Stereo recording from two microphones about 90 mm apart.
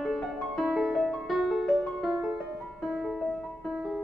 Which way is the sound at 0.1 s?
Centre (ahead or behind).